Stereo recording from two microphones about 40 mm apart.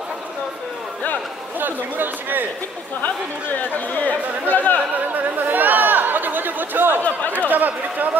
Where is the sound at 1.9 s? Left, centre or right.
Right.